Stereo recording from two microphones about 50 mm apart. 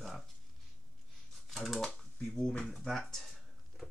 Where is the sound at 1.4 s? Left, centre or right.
Centre.